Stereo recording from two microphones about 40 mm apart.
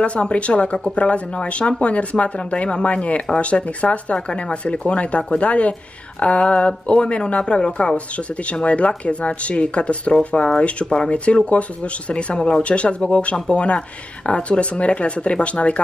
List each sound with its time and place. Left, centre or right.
0.0 s speech: left